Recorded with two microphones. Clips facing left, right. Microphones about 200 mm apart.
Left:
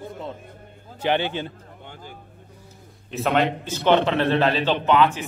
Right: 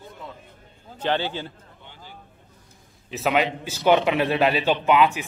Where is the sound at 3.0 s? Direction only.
5° right (ahead or behind).